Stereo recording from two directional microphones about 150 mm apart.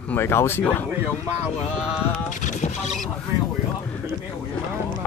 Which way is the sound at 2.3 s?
55° left (ahead or behind).